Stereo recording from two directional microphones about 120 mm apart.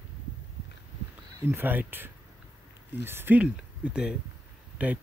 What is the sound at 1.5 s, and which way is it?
Speech, 15° right (ahead or behind).